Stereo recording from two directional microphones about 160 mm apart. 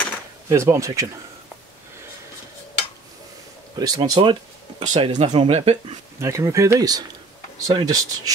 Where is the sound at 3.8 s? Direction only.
30° right (ahead or behind).